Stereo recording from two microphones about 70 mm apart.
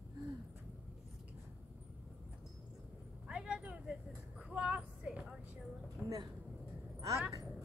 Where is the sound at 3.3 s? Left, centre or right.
Centre.